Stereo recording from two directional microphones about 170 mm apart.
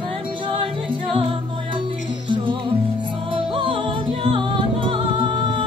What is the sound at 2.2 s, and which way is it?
Music, 30° right (ahead or behind).